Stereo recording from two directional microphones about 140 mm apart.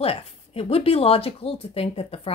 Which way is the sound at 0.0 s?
45° left (ahead or behind).